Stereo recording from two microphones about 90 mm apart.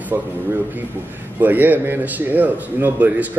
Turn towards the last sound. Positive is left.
turn(degrees=-20)  # may be behind; listen again after turning